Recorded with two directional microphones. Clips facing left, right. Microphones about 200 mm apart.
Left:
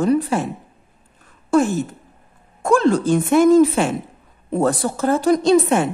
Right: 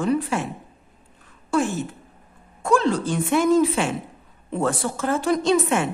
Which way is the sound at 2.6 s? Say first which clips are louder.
Left 5 dB; 45° left (ahead or behind).